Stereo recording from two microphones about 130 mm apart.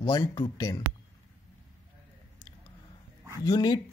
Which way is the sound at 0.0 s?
30° left (ahead or behind).